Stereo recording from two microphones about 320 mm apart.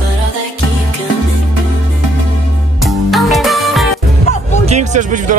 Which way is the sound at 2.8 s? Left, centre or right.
Centre.